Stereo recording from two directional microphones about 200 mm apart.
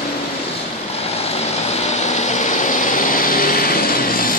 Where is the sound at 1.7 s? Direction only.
35° left (ahead or behind).